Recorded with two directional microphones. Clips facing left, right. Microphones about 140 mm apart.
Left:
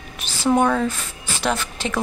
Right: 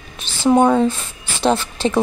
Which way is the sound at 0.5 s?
25° right (ahead or behind).